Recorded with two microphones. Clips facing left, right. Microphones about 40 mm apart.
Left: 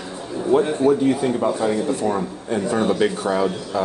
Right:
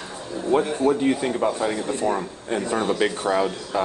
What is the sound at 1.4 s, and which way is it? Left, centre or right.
Speech, centre.